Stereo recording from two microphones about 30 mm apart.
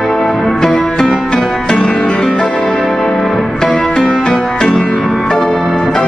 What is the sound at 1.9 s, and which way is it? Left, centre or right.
Music, left.